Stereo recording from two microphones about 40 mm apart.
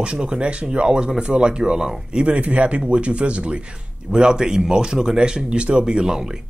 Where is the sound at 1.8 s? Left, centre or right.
Centre.